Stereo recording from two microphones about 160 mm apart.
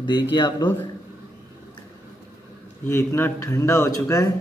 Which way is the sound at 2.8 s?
15° left (ahead or behind).